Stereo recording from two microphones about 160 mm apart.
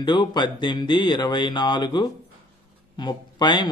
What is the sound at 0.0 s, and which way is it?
Mantra, 30° left (ahead or behind).